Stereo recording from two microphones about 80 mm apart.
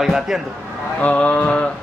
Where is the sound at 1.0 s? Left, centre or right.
Centre.